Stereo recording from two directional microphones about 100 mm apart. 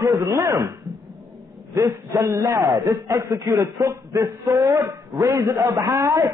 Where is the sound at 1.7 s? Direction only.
30° right (ahead or behind).